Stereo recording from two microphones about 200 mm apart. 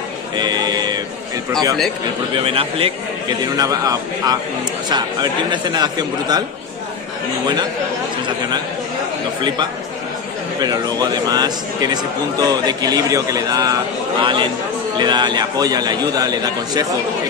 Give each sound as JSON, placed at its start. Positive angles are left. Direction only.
{"t": 0.4, "sound": "a sound", "side_deg": -20}
{"t": 2.3, "sound": "a man's voice", "side_deg": -25}
{"t": 10.6, "sound": "a man's voice", "side_deg": -20}